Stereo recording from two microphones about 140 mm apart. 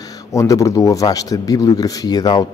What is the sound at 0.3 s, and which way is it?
Speech, 20° left (ahead or behind).